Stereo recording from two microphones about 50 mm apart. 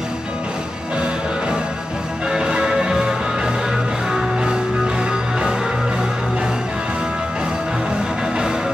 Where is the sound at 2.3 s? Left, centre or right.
Centre.